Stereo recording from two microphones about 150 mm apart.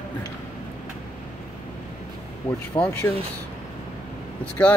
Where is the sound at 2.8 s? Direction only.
35° left (ahead or behind).